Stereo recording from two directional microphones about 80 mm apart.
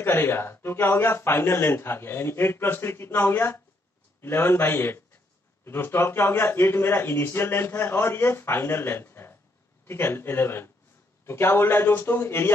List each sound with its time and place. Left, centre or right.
0.0 s a man's voice: left